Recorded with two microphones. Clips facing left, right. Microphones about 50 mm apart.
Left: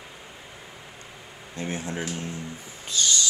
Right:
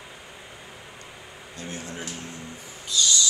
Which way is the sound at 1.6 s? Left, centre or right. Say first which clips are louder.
Left 5 dB; left.